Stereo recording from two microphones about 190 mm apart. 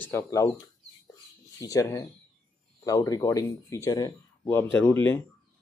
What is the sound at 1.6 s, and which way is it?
Speech, 15° left (ahead or behind).